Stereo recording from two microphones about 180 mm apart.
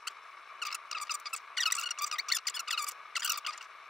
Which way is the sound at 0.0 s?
Centre (ahead or behind).